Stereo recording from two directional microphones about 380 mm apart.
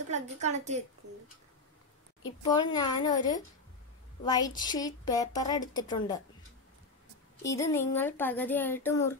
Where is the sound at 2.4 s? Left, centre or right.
Centre.